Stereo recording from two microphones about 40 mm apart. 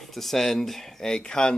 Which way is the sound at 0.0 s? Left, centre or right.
Centre.